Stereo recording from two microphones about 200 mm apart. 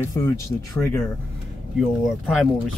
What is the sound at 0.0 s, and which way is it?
Speech, 10° left (ahead or behind).